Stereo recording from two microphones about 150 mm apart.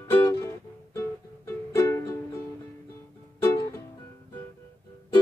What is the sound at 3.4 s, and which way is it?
Music, 25° left (ahead or behind).